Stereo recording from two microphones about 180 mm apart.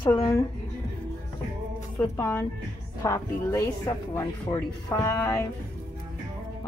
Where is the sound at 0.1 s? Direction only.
15° left (ahead or behind).